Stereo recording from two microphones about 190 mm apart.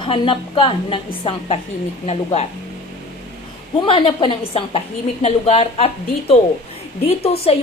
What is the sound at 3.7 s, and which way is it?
A woman's voice, 25° left (ahead or behind).